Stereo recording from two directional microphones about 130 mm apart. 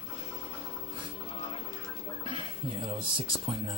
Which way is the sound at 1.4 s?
45° left (ahead or behind).